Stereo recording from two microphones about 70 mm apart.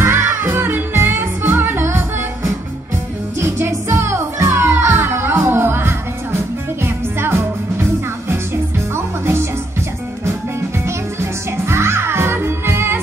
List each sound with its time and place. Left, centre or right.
0.0 s music: right
8.9 s music: right
11.5 s music: right